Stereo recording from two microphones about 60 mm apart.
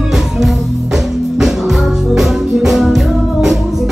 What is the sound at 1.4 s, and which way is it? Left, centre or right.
Music, centre.